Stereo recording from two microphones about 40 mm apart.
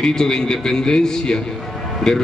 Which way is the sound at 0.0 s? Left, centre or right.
Centre.